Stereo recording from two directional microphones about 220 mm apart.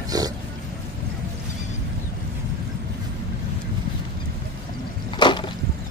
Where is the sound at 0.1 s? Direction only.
15° right (ahead or behind).